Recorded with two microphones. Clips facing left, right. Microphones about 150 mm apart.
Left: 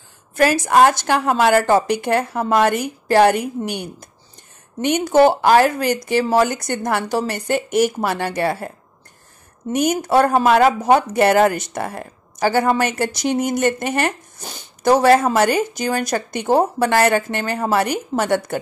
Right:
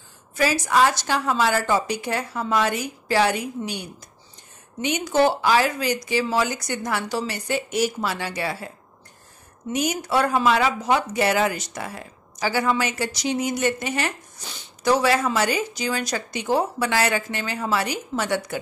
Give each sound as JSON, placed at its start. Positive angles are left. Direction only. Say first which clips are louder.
{"t": 0.4, "sound": "a woman's voice", "louder": "left 6 dB", "side_deg": 55}